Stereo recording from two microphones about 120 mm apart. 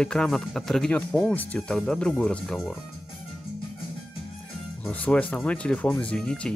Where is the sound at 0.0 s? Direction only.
5° left (ahead or behind).